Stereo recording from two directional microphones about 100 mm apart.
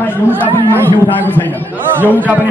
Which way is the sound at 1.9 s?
20° right (ahead or behind).